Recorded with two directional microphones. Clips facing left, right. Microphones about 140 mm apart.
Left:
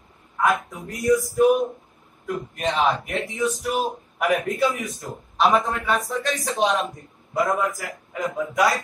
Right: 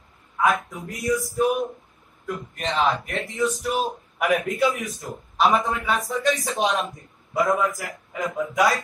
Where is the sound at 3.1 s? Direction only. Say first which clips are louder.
Even; centre (ahead or behind).